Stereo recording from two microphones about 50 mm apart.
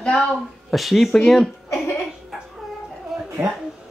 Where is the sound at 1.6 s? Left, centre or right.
Left.